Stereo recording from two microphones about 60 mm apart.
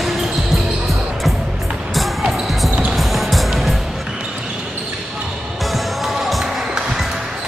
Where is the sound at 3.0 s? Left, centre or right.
Centre.